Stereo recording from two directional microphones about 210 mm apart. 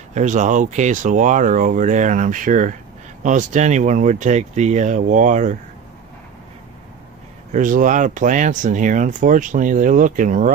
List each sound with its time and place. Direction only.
0.1 s speech: 35° right (ahead or behind)
7.5 s speech: 40° right (ahead or behind)